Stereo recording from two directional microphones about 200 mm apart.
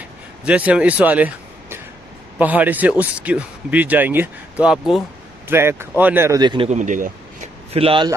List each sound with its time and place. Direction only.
0.5 s speech: 5° right (ahead or behind); by 6.7 s 20° right (ahead or behind)
6.7 s speech: 40° right (ahead or behind)
7.7 s speech: 25° right (ahead or behind)